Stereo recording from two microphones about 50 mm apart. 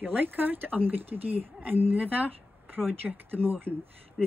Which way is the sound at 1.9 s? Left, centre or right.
Right.